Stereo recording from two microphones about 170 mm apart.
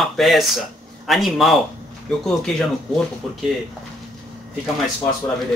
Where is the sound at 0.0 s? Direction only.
Centre (ahead or behind).